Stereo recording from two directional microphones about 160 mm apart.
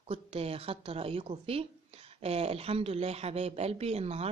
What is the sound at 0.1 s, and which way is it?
Speech, 40° right (ahead or behind).